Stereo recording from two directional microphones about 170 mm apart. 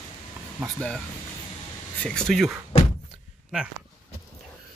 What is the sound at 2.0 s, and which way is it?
Speech, 5° left (ahead or behind).